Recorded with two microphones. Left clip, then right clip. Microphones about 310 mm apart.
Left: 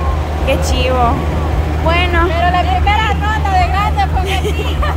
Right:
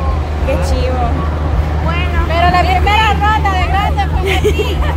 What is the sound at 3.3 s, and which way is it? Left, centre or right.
Speech, centre.